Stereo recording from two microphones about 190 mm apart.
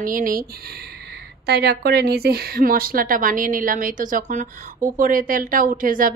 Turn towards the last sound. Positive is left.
turn(degrees=-45)  # may be behind; listen again after turning